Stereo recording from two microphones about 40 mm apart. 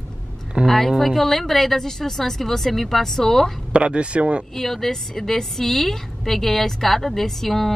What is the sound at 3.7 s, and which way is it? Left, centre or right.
Speech, right.